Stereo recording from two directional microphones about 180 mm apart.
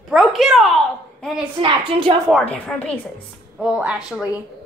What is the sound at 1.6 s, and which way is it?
Speech, 30° right (ahead or behind).